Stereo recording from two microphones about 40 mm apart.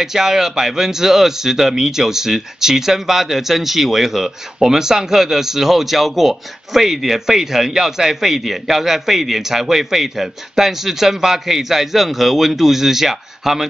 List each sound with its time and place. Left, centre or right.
0.0 s speech: centre